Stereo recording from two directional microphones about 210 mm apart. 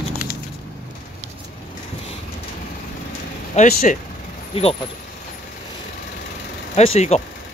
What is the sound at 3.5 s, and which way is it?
Speech, 40° left (ahead or behind).